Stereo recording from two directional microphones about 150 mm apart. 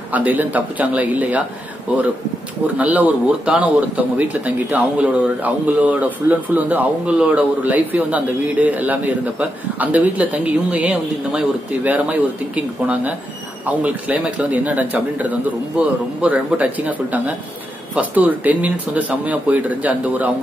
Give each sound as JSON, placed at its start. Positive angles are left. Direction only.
{"t": 0.1, "sound": "speech", "side_deg": -10}
{"t": 2.6, "sound": "speech", "side_deg": -10}